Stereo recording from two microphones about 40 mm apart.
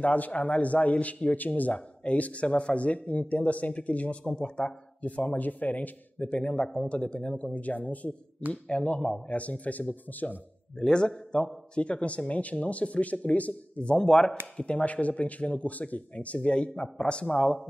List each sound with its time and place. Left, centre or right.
0.0 s a man's voice: left
4.3 s a man's voice: centre
5.3 s a man's voice: left
6.4 s a man's voice: left
6.9 s a man's voice: left
7.5 s a man's voice: left
9.4 s a man's voice: left
10.8 s a man's voice: left
14.6 s a man's voice: left